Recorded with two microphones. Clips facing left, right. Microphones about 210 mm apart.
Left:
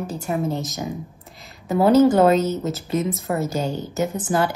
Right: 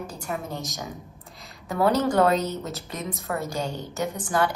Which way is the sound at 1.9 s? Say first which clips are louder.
Left 9 dB; centre (ahead or behind).